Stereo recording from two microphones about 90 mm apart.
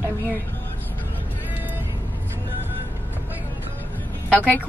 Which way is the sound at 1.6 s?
20° right (ahead or behind).